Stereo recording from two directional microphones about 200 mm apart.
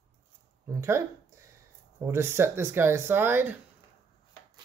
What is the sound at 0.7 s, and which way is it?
Speech, 15° right (ahead or behind).